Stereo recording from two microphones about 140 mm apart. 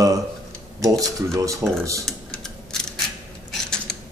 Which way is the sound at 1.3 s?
25° right (ahead or behind).